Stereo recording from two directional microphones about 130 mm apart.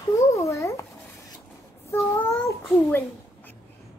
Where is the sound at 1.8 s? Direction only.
20° left (ahead or behind).